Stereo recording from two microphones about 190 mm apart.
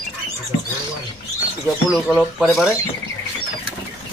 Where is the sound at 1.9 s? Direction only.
Centre (ahead or behind).